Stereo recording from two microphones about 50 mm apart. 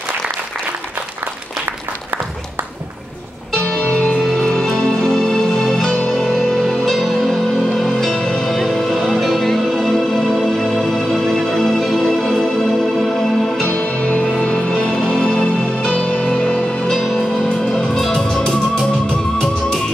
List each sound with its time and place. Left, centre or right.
3.5 s music: centre
4.2 s music: centre
13.7 s music: left
14.7 s music: centre
16.8 s music: centre